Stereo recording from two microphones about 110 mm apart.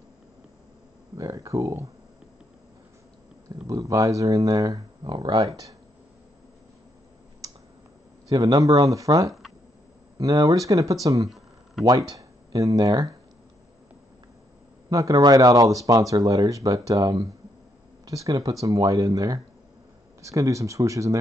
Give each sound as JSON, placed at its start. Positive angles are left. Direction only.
{"t": 1.1, "sound": "speech", "side_deg": -30}
{"t": 3.6, "sound": "speech", "side_deg": -30}
{"t": 5.4, "sound": "speech", "side_deg": -30}
{"t": 8.3, "sound": "speech", "side_deg": -35}
{"t": 11.2, "sound": "a sound", "side_deg": 0}
{"t": 11.8, "sound": "speech", "side_deg": -35}
{"t": 14.9, "sound": "speech", "side_deg": -35}